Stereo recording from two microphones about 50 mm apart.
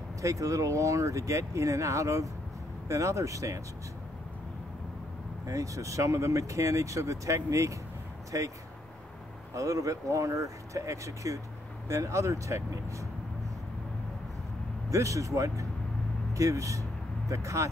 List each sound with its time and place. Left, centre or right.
0.2 s speech: right
5.5 s speech: right
14.9 s speech: right